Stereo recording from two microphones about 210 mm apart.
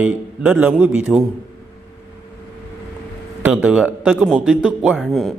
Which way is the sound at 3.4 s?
5° right (ahead or behind).